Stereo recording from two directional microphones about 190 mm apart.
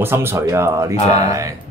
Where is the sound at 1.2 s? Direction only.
15° right (ahead or behind).